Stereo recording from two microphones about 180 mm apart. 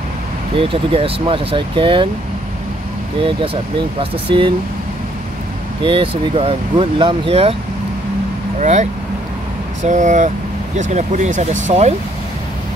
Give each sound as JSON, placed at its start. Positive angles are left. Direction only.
{"t": 0.6, "sound": "speech", "side_deg": -30}
{"t": 4.0, "sound": "speech", "side_deg": -30}
{"t": 5.9, "sound": "speech", "side_deg": -30}
{"t": 8.5, "sound": "speech", "side_deg": -40}
{"t": 9.8, "sound": "speech", "side_deg": -40}